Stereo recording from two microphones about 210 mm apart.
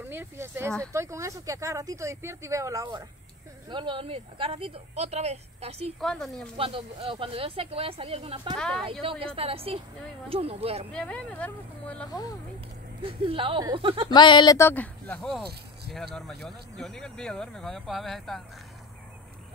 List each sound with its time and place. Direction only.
0.0 s speech: 10° right (ahead or behind); by 5.9 s 30° right (ahead or behind)
5.9 s speech: centre (ahead or behind)
6.5 s speech: 25° right (ahead or behind)
8.5 s speech: 5° left (ahead or behind)
9.0 s speech: 25° right (ahead or behind)
10.9 s speech: 5° left (ahead or behind)
12.1 s speech: 15° left (ahead or behind)
13.0 s speech: 25° right (ahead or behind)
14.1 s speech: 20° left (ahead or behind); by 18.4 s centre (ahead or behind)